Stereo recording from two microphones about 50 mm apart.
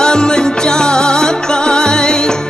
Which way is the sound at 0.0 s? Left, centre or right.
Centre.